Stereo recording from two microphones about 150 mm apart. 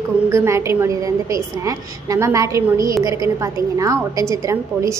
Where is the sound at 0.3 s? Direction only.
20° right (ahead or behind).